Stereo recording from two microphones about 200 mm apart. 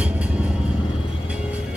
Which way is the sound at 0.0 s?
5° right (ahead or behind).